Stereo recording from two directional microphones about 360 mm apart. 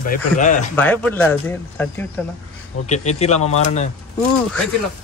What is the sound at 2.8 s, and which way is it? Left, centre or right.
Speech, centre.